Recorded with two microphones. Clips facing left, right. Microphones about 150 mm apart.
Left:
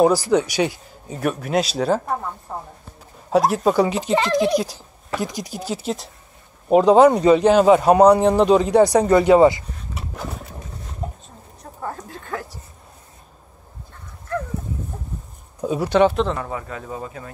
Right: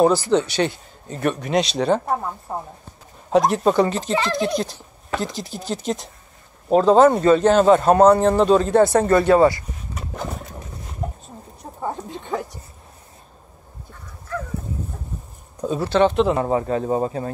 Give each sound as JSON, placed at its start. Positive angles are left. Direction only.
{"t": 0.0, "sound": "speech", "side_deg": 10}
{"t": 2.5, "sound": "speech", "side_deg": -10}
{"t": 3.3, "sound": "speech", "side_deg": 5}
{"t": 9.9, "sound": "a sound", "side_deg": 5}
{"t": 11.6, "sound": "a sound", "side_deg": -20}
{"t": 15.6, "sound": "speech", "side_deg": 10}
{"t": 16.3, "sound": "speech", "side_deg": -35}